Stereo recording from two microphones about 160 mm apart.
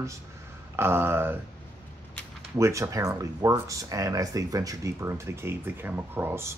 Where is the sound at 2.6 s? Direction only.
20° right (ahead or behind).